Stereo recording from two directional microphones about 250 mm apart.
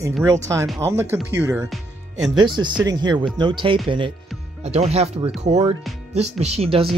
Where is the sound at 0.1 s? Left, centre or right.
Centre.